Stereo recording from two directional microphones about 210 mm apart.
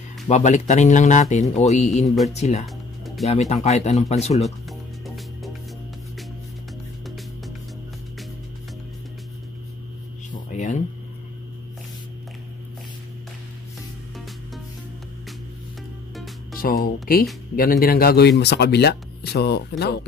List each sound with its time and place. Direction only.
0.3 s speech: 35° left (ahead or behind)
3.3 s speech: 30° left (ahead or behind)
4.4 s music: centre (ahead or behind)
7.1 s music: centre (ahead or behind)
10.3 s a sound: 35° left (ahead or behind)
16.5 s music: 45° left (ahead or behind)
17.6 s speech: 45° left (ahead or behind)